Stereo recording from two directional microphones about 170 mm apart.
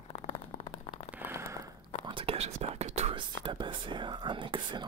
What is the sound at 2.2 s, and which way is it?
Whispering, 35° right (ahead or behind).